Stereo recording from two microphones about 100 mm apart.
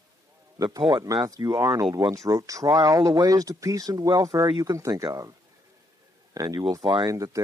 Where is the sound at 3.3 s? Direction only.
35° right (ahead or behind).